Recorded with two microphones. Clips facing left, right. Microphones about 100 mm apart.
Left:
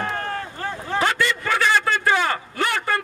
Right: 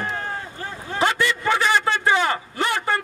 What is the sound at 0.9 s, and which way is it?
A man's voice, 20° right (ahead or behind).